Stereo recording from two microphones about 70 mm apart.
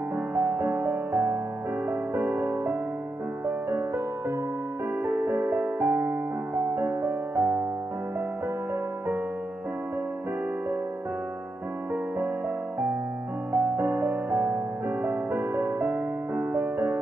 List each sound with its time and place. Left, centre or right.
0.3 s music: right
5.0 s music: right
13.5 s music: right